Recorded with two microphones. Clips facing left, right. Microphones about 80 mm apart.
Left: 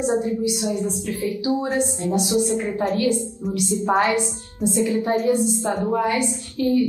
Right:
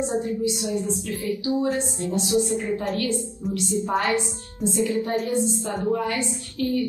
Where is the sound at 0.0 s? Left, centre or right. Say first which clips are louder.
Left 3 dB; left.